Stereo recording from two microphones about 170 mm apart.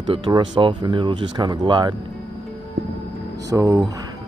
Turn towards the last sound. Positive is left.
turn(degrees=-20)  # may be behind; listen again after turning